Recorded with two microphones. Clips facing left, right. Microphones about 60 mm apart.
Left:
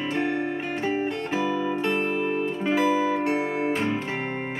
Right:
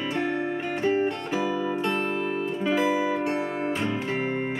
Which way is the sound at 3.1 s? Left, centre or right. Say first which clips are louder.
Left 2 dB; centre.